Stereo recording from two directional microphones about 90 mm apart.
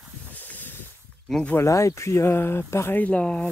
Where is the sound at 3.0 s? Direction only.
10° left (ahead or behind).